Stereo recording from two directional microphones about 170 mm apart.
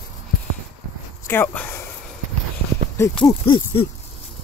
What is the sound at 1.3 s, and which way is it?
Speech, 15° left (ahead or behind).